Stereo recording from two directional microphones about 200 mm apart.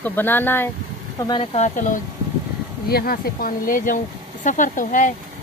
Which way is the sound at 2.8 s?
50° left (ahead or behind).